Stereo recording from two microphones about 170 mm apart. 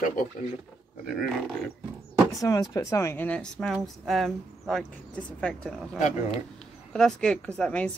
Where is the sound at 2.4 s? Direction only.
20° left (ahead or behind); by 5.9 s centre (ahead or behind).